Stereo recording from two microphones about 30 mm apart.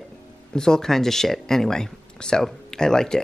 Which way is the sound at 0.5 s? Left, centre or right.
Left.